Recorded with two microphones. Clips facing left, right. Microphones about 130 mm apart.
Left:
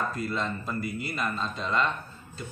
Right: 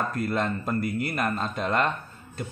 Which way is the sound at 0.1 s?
55° right (ahead or behind).